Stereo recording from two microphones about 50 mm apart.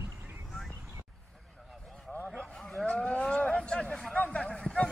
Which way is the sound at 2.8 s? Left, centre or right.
Left.